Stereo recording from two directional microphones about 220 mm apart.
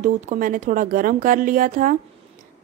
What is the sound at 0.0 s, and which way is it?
Speech, 35° right (ahead or behind).